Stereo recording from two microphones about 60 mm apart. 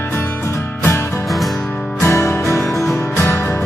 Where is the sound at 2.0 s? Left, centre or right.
Left.